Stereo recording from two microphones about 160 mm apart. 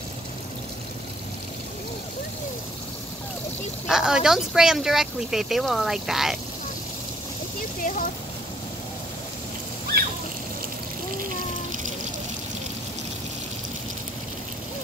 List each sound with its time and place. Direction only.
3.8 s speech: 5° right (ahead or behind)
7.8 s speech: 55° left (ahead or behind)